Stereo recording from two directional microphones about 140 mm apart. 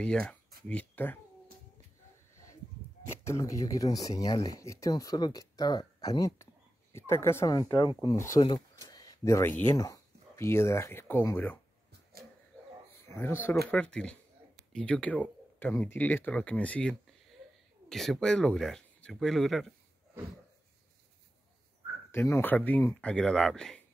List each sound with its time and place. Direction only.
0.0 s speech: 5° left (ahead or behind)
3.3 s speech: 20° left (ahead or behind)
8.4 s speech: 35° left (ahead or behind)
8.8 s speech: 25° left (ahead or behind)
13.1 s speech: 15° left (ahead or behind); by 19.7 s centre (ahead or behind)
22.1 s speech: 15° left (ahead or behind)